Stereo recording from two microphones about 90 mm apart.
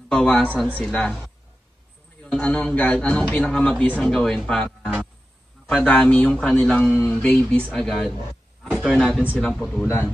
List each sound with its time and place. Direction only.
0.1 s a man's voice: 10° left (ahead or behind)
2.2 s a sound: 10° left (ahead or behind)
2.5 s a man's voice: 15° left (ahead or behind)
9.8 s speech: 25° left (ahead or behind)